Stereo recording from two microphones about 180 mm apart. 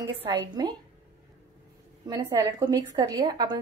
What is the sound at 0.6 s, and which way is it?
Speech, 20° right (ahead or behind).